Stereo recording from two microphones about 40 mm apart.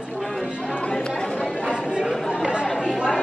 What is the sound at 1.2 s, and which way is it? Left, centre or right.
Chatter, centre.